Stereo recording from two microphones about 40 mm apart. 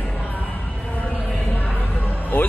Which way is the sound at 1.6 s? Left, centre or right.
Left.